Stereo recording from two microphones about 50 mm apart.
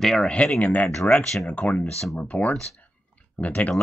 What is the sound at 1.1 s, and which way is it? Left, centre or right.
Speech, centre.